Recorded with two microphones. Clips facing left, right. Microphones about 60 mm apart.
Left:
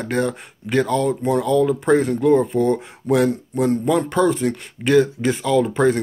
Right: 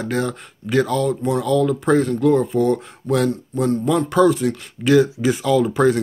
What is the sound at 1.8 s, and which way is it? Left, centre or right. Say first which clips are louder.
Speech: even; centre.